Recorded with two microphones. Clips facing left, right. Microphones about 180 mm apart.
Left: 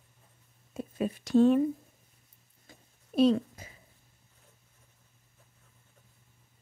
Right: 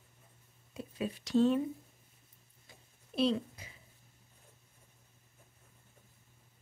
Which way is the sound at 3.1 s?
45° left (ahead or behind).